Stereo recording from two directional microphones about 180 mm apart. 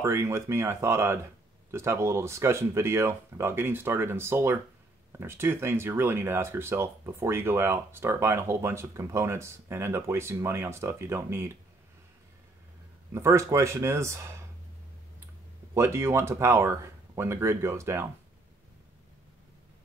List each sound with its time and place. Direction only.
0.0 s speech: 15° right (ahead or behind)
13.1 s speech: 15° right (ahead or behind)
15.7 s speech: 15° right (ahead or behind)